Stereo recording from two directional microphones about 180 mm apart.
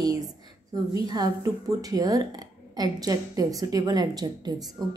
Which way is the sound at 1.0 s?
20° right (ahead or behind).